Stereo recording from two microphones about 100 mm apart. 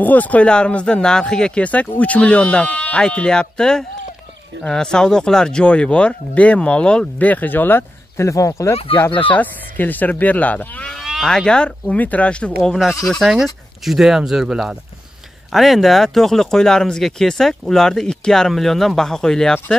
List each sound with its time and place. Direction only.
0.0 s speech: 15° left (ahead or behind); by 8.7 s 30° left (ahead or behind)
9.3 s speech: 15° left (ahead or behind)
11.0 s speech: centre (ahead or behind)